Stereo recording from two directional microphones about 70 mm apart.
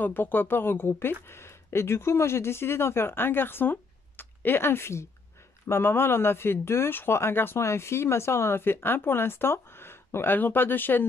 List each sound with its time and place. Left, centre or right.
0.0 s speech: left